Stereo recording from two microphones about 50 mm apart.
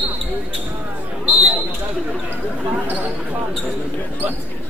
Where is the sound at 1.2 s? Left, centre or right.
Right.